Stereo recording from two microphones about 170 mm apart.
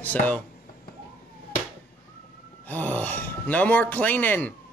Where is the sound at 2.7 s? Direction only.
10° left (ahead or behind).